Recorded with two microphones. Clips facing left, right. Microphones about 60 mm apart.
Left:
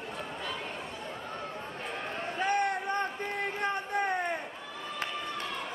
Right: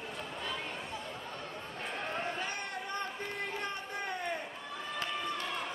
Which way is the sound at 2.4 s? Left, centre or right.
Left.